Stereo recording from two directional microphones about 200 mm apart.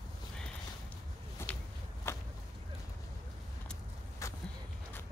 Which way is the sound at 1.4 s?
10° left (ahead or behind).